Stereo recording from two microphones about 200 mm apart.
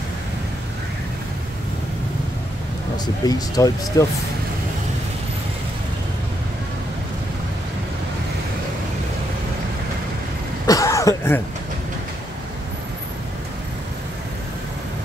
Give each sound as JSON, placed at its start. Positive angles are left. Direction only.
{"t": 3.3, "sound": "speech", "side_deg": 20}
{"t": 10.7, "sound": "throat clearing", "side_deg": 15}